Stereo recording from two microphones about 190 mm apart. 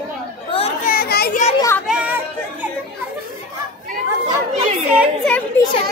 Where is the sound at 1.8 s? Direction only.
5° right (ahead or behind).